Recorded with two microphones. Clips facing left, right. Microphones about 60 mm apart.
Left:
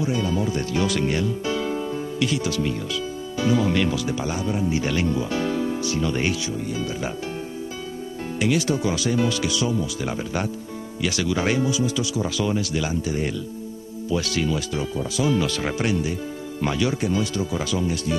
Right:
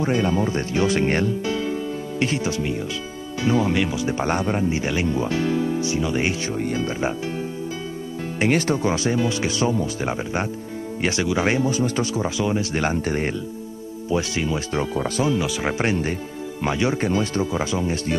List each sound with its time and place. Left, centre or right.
0.0 s speech: right
1.0 s speech: right; by 4.1 s centre
4.1 s speech: right
4.6 s speech: right
8.4 s speech: right
11.7 s speech: right
12.4 s speech: right
12.7 s speech: right
14.0 s speech: right
14.7 s speech: right
15.3 s speech: centre
15.8 s speech: right
16.6 s speech: right